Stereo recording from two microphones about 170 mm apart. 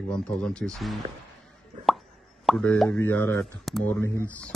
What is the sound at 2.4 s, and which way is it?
Speech, 5° left (ahead or behind).